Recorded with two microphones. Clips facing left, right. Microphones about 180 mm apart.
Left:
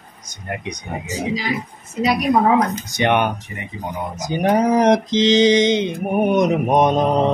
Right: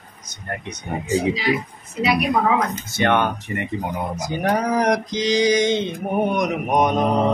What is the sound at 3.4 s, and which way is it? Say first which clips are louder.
Speech: right 6 dB; 65° right (ahead or behind).